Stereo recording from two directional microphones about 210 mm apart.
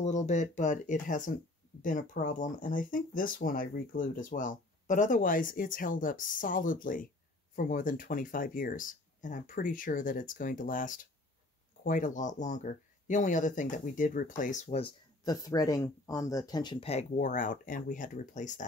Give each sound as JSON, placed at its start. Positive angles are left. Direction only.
{"t": 0.0, "sound": "speech", "side_deg": 35}